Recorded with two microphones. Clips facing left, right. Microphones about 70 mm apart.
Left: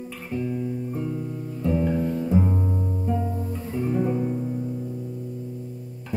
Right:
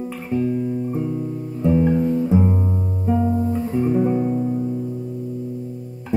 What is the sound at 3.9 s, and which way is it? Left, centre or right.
Music, centre.